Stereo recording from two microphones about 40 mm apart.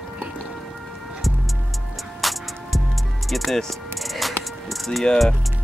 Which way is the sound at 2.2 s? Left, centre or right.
Centre.